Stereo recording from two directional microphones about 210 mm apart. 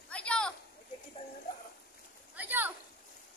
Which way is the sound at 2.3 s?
10° right (ahead or behind).